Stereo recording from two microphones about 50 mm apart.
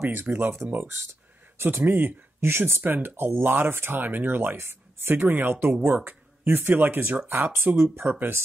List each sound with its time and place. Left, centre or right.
0.0 s speech: right
1.8 s speech: right
2.8 s speech: right
6.0 s a sound: right
6.7 s speech: right